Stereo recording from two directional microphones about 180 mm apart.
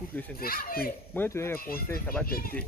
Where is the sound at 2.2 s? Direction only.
55° left (ahead or behind).